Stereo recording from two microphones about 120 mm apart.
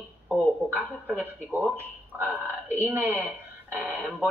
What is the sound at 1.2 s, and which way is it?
Speech, 15° right (ahead or behind).